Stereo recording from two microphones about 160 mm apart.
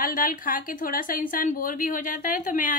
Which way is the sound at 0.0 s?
60° left (ahead or behind).